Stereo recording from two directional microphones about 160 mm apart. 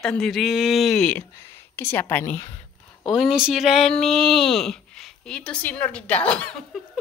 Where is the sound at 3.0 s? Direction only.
Centre (ahead or behind).